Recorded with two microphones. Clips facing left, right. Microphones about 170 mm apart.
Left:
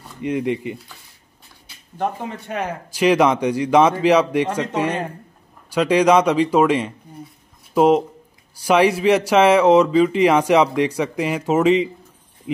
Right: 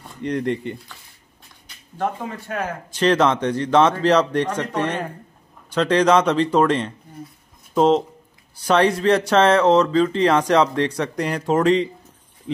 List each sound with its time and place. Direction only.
0.2 s speech: 5° left (ahead or behind)
2.0 s speech: 20° left (ahead or behind)